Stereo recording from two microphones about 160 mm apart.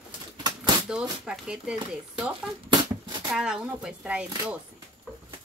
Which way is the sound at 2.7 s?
25° right (ahead or behind).